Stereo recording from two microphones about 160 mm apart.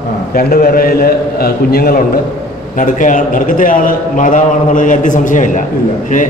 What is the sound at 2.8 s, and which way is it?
A man's voice, 55° left (ahead or behind).